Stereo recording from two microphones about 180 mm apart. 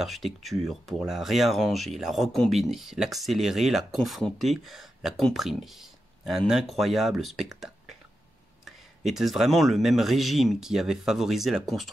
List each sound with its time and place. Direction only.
0.0 s speech: centre (ahead or behind)